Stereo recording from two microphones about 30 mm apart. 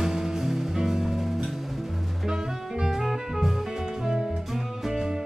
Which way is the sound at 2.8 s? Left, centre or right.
Centre.